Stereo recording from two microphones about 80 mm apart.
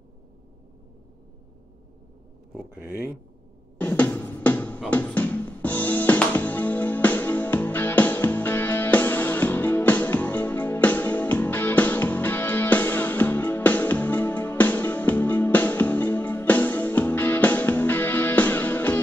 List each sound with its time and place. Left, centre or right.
2.5 s speech: right
3.7 s music: centre